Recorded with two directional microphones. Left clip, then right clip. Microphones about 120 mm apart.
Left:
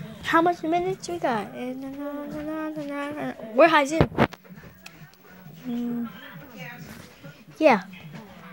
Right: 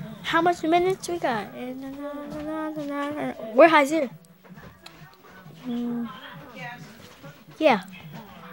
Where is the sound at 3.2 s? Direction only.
40° right (ahead or behind).